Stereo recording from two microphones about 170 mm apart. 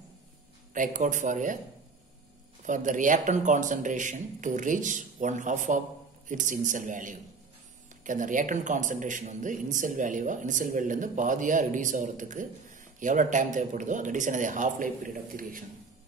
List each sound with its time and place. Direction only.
0.7 s a man's voice: 50° right (ahead or behind)
2.6 s a man's voice: 50° right (ahead or behind)